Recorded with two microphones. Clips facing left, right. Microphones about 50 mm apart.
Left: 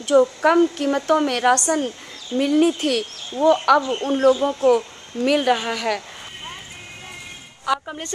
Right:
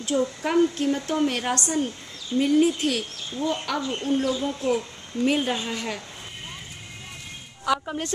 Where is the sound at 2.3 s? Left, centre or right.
Left.